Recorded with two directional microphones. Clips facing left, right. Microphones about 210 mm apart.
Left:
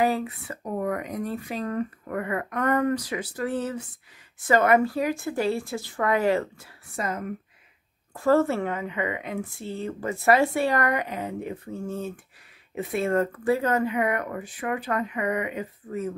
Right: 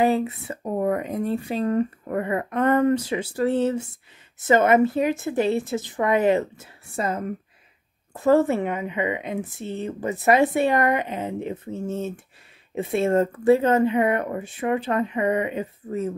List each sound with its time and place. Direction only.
0.0 s a woman's voice: 25° right (ahead or behind)